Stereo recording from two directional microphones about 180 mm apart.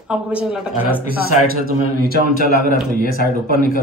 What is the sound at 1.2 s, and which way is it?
Speech, 55° right (ahead or behind).